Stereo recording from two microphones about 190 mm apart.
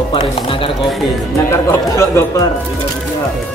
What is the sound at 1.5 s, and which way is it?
Speech, 15° left (ahead or behind).